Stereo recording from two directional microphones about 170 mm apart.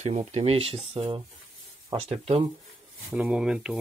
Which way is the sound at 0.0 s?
40° right (ahead or behind).